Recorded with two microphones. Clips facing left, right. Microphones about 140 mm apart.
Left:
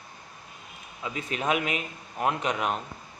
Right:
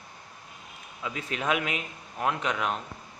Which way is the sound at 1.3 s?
5° left (ahead or behind).